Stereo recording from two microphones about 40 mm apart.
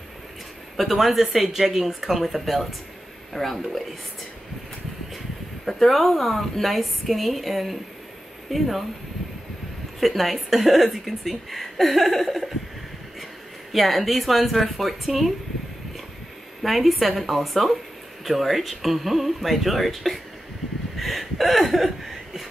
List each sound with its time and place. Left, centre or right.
0.7 s a woman's voice: centre
5.7 s a woman's voice: centre
9.9 s a woman's voice: centre
13.7 s a woman's voice: centre
16.6 s a woman's voice: centre